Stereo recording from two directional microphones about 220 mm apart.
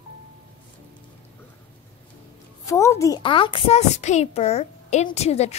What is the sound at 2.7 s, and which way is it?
A woman's voice, 15° left (ahead or behind).